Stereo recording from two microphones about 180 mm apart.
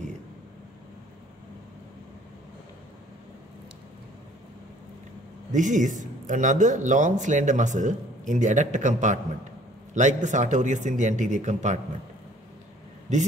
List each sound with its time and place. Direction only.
5.5 s a man's voice: 45° right (ahead or behind)
13.1 s a man's voice: 40° right (ahead or behind)